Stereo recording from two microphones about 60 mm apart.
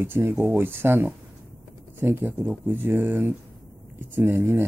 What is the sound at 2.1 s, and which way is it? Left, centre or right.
Speech, right.